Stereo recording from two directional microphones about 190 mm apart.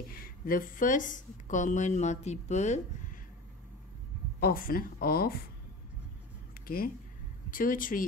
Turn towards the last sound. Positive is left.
turn(degrees=45)  # may be behind; listen again after turning